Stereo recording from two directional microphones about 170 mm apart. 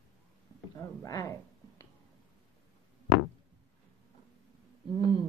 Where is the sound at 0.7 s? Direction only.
20° left (ahead or behind).